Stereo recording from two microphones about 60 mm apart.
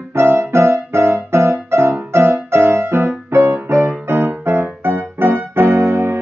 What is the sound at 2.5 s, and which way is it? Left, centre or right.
Music, right.